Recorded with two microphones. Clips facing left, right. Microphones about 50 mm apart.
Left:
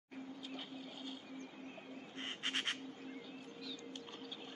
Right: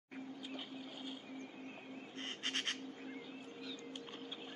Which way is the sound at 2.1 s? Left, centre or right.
Centre.